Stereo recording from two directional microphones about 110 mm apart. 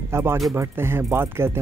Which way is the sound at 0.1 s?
25° right (ahead or behind).